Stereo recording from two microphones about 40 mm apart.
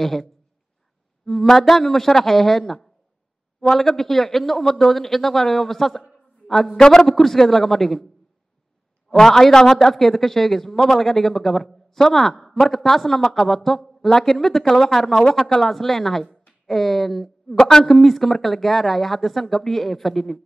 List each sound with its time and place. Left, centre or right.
0.0 s a man's voice: centre
9.1 s a man's voice: centre
17.8 s speech: centre